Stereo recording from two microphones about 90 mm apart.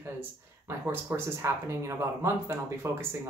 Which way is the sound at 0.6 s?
25° right (ahead or behind).